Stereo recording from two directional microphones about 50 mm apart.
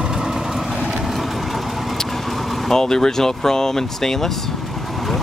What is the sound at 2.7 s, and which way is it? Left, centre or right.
Speech, centre.